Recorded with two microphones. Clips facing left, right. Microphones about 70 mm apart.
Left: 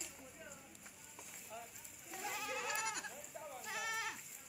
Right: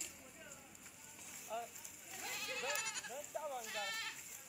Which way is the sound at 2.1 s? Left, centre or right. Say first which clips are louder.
Left 4 dB; centre.